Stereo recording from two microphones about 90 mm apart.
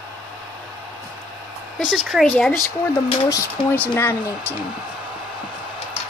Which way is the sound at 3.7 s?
20° left (ahead or behind).